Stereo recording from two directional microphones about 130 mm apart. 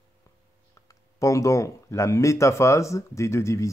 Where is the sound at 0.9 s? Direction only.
25° left (ahead or behind).